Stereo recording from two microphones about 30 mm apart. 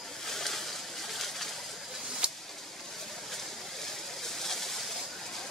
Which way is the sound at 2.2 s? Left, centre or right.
Right.